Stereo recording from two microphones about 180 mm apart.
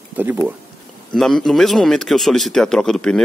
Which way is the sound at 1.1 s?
Centre (ahead or behind).